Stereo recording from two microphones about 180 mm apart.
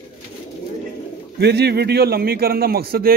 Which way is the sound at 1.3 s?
65° right (ahead or behind).